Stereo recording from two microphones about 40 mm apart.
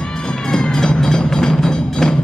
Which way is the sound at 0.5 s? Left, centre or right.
Centre.